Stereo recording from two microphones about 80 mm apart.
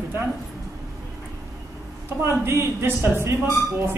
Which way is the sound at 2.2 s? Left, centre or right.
Right.